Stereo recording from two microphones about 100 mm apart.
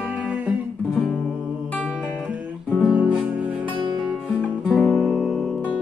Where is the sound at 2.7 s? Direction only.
10° right (ahead or behind).